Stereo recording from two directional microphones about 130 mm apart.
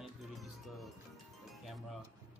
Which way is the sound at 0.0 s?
Centre (ahead or behind).